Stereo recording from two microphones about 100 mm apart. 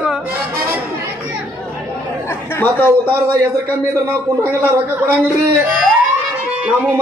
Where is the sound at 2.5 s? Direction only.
20° left (ahead or behind).